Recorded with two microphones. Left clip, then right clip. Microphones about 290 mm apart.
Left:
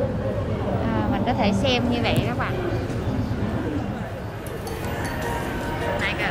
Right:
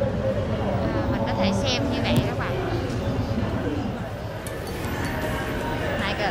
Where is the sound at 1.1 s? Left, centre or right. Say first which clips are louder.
Left 3 dB; centre.